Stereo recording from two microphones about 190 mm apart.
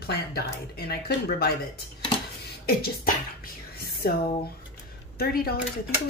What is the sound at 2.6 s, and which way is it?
Speech, 50° left (ahead or behind).